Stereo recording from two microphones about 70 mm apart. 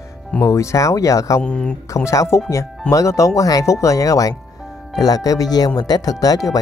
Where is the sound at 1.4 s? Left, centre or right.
Centre.